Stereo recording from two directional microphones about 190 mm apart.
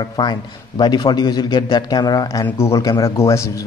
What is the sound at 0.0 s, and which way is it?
A man's voice, 25° left (ahead or behind).